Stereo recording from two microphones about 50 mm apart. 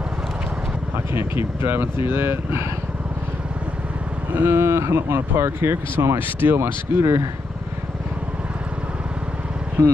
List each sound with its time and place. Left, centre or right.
0.9 s speech: right
4.5 s speech: right